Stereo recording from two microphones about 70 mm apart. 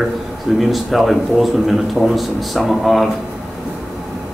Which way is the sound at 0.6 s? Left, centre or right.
Centre.